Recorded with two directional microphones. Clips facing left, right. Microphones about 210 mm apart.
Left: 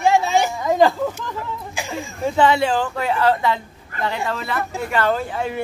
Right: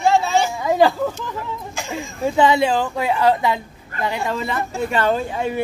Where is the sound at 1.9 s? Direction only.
15° right (ahead or behind).